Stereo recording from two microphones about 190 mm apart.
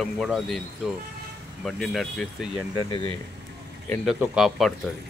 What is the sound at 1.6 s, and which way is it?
Speech, centre (ahead or behind).